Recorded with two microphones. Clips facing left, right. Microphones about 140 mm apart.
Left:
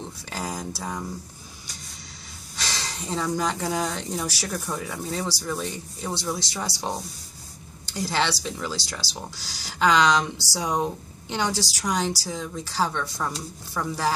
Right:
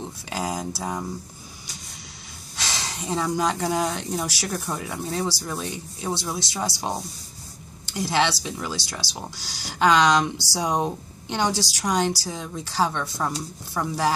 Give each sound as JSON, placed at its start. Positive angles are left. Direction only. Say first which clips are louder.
{"t": 0.0, "sound": "speech", "louder": "right 3 dB", "side_deg": -15}
{"t": 2.6, "sound": "a sound", "louder": "right 1 dB", "side_deg": -15}
{"t": 3.7, "sound": "speech", "louder": "right 2 dB", "side_deg": -15}
{"t": 7.9, "sound": "speech", "louder": "right 3 dB", "side_deg": -20}